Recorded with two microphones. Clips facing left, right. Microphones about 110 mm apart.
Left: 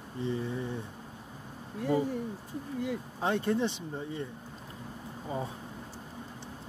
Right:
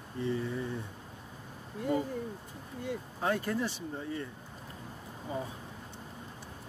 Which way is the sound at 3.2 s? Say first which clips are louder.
Left 3 dB; 25° left (ahead or behind).